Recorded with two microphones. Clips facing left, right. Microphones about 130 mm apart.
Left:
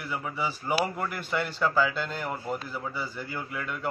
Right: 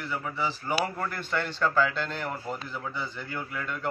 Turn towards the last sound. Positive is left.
turn(degrees=5)  # may be behind; listen again after turning